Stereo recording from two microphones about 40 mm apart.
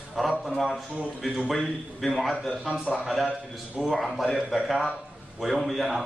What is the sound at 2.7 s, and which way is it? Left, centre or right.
Speech, right.